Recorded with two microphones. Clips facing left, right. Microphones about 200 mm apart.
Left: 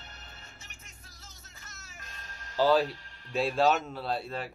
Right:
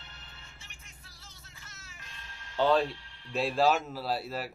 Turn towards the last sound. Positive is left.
turn(degrees=-5)  # may be behind; listen again after turning